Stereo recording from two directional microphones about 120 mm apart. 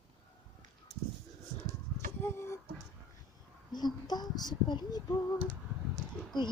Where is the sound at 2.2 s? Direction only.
20° left (ahead or behind).